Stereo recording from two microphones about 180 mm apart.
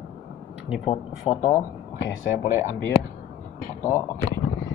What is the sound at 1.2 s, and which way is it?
Speech, 20° left (ahead or behind).